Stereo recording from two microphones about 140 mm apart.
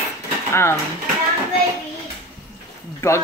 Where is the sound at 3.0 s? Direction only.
20° left (ahead or behind).